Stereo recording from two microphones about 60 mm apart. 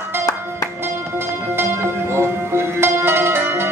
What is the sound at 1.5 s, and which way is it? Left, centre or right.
Music, right.